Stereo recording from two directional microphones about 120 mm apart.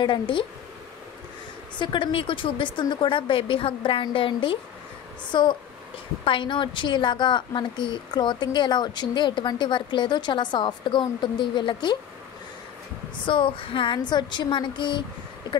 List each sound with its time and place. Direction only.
0.0 s a woman's voice: 40° left (ahead or behind)
1.8 s a woman's voice: 40° left (ahead or behind)
13.2 s a woman's voice: 45° left (ahead or behind)